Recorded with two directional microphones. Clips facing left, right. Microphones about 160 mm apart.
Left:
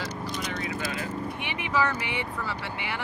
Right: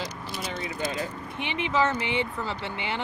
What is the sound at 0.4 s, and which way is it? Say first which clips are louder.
Speech: right 3 dB; 25° right (ahead or behind).